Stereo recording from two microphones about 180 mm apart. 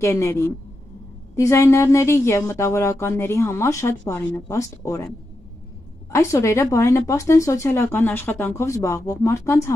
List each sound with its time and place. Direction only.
0.0 s speech: 15° left (ahead or behind)
6.1 s speech: 15° left (ahead or behind)